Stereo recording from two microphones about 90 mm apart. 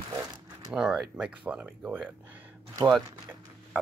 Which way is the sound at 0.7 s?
10° right (ahead or behind).